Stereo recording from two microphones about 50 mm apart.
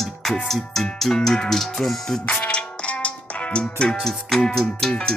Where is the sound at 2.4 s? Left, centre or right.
Left.